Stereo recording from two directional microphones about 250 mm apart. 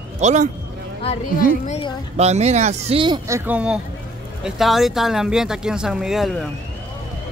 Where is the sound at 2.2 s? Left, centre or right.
Right.